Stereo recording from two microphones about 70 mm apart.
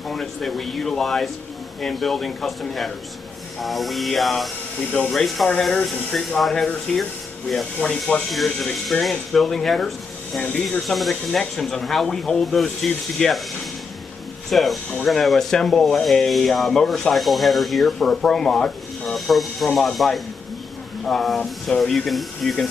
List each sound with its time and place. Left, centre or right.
0.1 s speech: centre
10.4 s speech: centre
10.9 s speech: centre
14.5 s speech: centre